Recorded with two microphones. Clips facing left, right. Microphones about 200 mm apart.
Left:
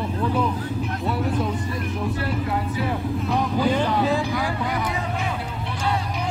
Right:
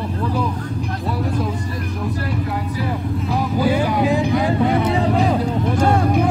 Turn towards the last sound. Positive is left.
turn(degrees=-50)  # may be behind; listen again after turning